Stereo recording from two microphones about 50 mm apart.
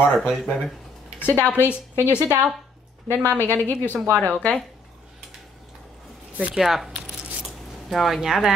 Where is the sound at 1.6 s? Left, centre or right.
Left.